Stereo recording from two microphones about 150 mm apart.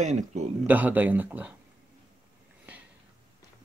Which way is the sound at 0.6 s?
10° right (ahead or behind).